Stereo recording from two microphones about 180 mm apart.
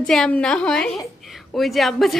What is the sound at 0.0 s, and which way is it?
A woman's voice, 5° left (ahead or behind).